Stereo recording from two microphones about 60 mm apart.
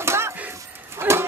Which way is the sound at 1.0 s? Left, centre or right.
Right.